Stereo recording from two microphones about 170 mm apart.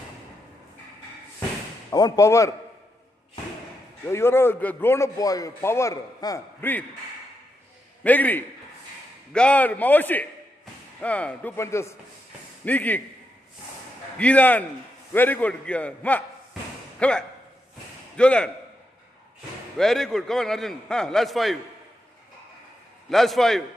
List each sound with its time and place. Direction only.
1.9 s speech: 20° left (ahead or behind)
4.1 s a man's voice: 15° left (ahead or behind)
8.0 s a man's voice: 10° left (ahead or behind)
14.1 s a man's voice: 5° left (ahead or behind)
19.8 s a man's voice: centre (ahead or behind)
23.0 s a man's voice: centre (ahead or behind)